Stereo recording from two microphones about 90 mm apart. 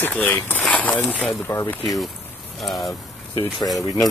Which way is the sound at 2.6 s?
Centre (ahead or behind).